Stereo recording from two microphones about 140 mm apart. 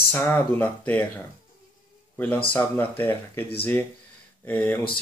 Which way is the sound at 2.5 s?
15° left (ahead or behind).